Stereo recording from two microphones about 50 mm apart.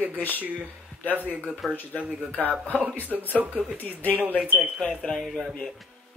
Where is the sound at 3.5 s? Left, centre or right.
Left.